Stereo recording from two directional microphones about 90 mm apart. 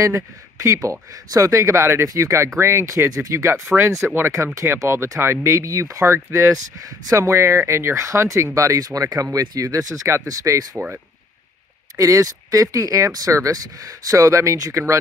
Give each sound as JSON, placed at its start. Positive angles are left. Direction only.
{"t": 0.0, "sound": "speech", "side_deg": -35}
{"t": 12.0, "sound": "speech", "side_deg": -40}